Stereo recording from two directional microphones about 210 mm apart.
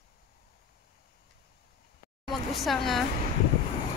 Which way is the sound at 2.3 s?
Centre (ahead or behind).